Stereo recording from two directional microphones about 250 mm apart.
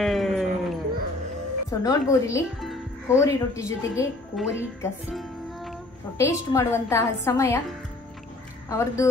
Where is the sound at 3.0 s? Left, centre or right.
Centre.